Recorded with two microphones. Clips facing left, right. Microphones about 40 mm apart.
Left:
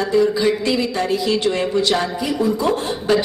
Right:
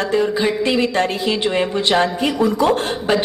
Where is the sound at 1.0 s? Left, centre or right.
Right.